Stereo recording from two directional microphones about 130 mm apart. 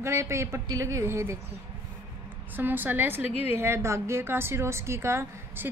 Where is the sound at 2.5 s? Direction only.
15° right (ahead or behind).